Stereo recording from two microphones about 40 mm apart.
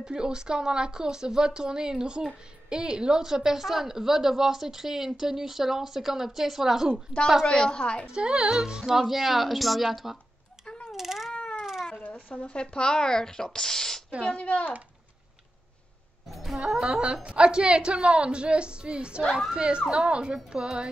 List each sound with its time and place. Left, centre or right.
0.0 s speech: centre
7.7 s a woman's voice: left
8.1 s a woman's voice: right; by 10.1 s centre
10.6 s mechanisms: left
10.9 s baby cry: centre
11.3 s a sound: left
12.0 s a sound: left
12.4 s speech: left
14.3 s speech: left
16.5 s a woman's voice: right